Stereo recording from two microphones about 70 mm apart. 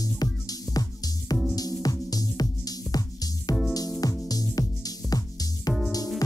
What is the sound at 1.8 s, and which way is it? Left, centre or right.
Music, left.